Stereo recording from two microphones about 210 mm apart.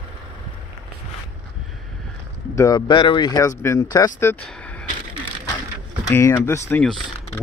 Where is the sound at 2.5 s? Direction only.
20° left (ahead or behind).